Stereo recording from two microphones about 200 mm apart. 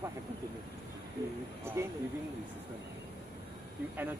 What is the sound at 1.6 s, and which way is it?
Speech, 10° right (ahead or behind).